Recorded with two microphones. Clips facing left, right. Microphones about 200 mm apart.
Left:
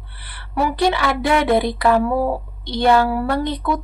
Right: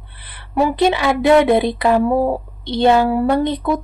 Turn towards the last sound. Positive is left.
turn(degrees=-20)  # may be behind; listen again after turning